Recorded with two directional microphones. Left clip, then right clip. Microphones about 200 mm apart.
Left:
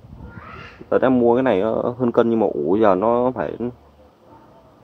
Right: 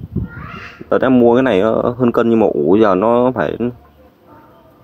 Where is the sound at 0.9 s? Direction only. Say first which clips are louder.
Right 5 dB; 35° right (ahead or behind).